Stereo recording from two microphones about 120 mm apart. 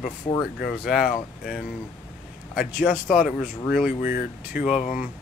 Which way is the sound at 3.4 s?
5° right (ahead or behind).